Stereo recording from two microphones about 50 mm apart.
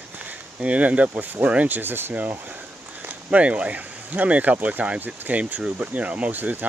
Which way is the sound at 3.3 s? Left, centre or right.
Right.